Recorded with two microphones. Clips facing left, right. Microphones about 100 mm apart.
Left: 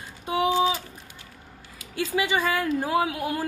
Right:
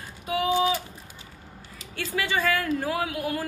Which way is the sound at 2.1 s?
15° left (ahead or behind).